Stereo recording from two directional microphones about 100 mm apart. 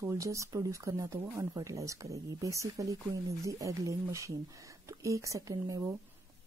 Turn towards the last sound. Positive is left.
turn(degrees=-35)  # may be behind; listen again after turning